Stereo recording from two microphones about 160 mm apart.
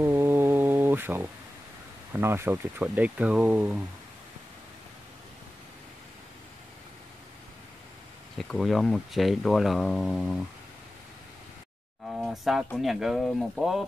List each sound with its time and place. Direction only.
0.0 s a sound: 15° right (ahead or behind)
2.1 s speech: 15° right (ahead or behind)
8.4 s speech: centre (ahead or behind)
12.1 s speech: centre (ahead or behind)